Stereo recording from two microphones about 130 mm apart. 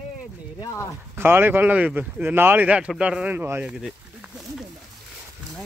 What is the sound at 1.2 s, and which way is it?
Speech, 15° right (ahead or behind).